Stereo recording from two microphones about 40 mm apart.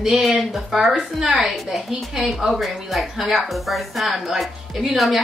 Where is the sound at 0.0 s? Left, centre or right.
Centre.